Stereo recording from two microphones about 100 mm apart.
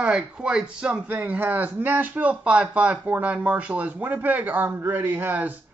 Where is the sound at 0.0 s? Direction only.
10° right (ahead or behind).